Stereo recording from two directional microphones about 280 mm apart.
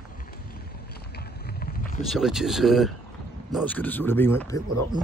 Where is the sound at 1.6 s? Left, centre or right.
Left.